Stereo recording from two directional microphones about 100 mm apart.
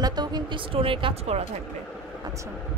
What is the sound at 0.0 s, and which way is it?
Speech, 45° right (ahead or behind).